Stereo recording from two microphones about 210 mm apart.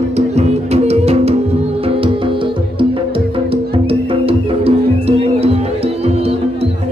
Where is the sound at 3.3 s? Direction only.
25° right (ahead or behind).